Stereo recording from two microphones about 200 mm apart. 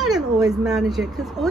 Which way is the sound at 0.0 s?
Centre (ahead or behind).